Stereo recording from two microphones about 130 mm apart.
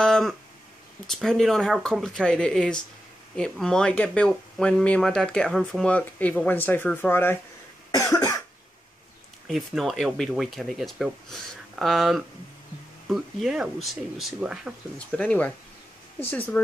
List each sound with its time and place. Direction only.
0.0 s a sound: 5° left (ahead or behind)
1.0 s speech: 5° left (ahead or behind)
7.9 s cough: 25° left (ahead or behind)
9.5 s speech: centre (ahead or behind)
15.0 s speech: 10° left (ahead or behind)